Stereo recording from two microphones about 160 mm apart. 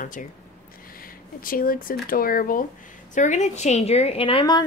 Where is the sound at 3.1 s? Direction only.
50° left (ahead or behind); by 4.6 s 30° left (ahead or behind).